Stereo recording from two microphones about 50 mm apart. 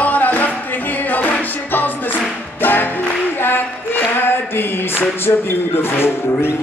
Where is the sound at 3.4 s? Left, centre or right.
Left.